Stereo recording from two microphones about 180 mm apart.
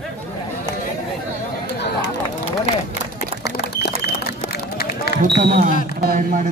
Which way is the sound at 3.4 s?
65° left (ahead or behind).